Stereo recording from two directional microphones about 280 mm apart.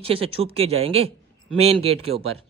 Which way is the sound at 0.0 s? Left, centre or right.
Centre.